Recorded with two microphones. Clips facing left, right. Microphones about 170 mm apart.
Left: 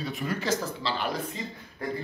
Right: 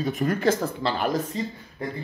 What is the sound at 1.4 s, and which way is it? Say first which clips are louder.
Speech: right 7 dB; 35° right (ahead or behind).